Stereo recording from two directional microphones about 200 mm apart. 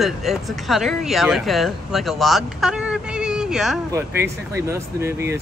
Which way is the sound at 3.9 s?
15° right (ahead or behind).